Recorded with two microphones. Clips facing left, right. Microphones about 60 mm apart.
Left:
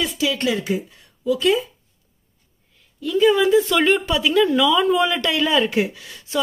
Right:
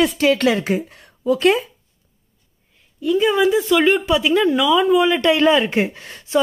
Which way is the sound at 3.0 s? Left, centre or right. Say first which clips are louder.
Even; centre.